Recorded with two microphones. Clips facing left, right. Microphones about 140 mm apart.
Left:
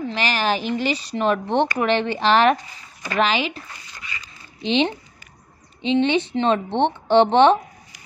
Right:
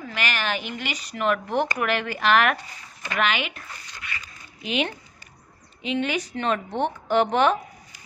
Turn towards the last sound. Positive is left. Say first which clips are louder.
# left 6 dB
turn(degrees=30)  # may be behind; listen again after turning